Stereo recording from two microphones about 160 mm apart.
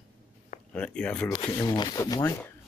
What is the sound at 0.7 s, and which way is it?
Speech, 5° left (ahead or behind).